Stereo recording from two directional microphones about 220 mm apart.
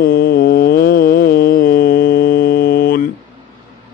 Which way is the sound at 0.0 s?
40° left (ahead or behind).